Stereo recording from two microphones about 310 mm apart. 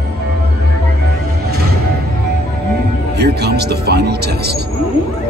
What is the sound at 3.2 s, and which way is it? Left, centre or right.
Speech, right.